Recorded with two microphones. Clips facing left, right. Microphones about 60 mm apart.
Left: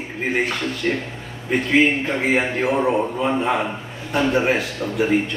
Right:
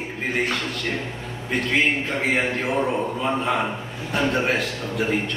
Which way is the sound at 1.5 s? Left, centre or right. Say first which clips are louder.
Left 4 dB; centre.